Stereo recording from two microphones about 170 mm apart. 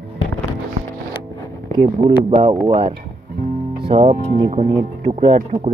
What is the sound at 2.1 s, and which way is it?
Speech, 35° right (ahead or behind).